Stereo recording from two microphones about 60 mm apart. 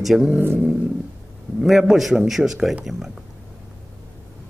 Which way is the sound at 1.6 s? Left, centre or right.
Centre.